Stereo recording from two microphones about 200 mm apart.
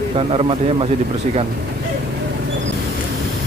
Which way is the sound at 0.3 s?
25° right (ahead or behind).